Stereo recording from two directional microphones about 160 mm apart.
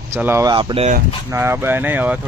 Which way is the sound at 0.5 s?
35° right (ahead or behind).